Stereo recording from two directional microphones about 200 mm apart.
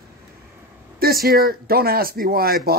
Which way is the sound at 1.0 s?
50° right (ahead or behind).